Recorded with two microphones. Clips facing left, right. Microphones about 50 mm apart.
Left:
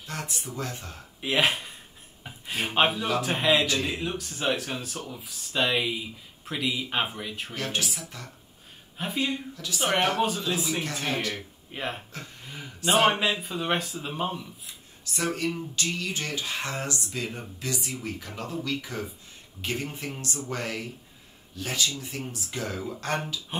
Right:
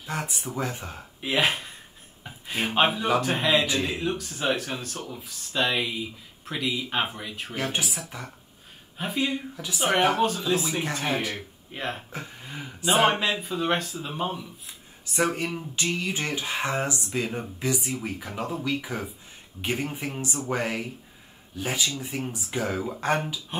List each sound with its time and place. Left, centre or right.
0.0 s speech: centre
1.2 s speech: centre
7.5 s speech: centre
8.9 s speech: centre
10.2 s speech: centre
11.7 s speech: centre
12.1 s speech: centre
13.0 s speech: centre
15.1 s speech: right